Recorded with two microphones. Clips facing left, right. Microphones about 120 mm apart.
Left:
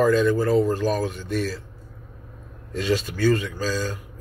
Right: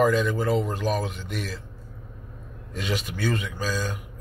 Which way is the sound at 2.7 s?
15° right (ahead or behind).